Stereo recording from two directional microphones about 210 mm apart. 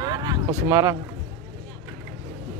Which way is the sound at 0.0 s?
20° right (ahead or behind).